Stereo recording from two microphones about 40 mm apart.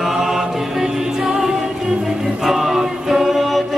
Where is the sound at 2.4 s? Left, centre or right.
Centre.